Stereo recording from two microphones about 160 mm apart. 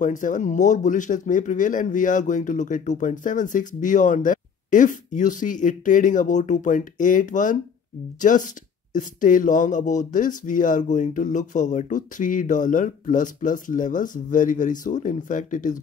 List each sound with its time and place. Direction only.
0.0 s speech: 55° left (ahead or behind)